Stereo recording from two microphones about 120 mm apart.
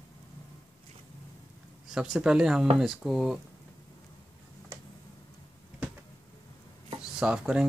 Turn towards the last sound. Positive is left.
turn(degrees=-10)  # may be behind; listen again after turning